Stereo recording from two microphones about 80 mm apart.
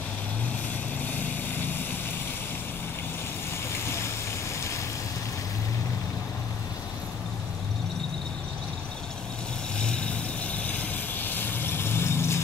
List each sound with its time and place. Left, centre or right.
1.0 s vehicle: left
3.8 s vehicle: left
9.8 s vehicle: centre; by 12.4 s left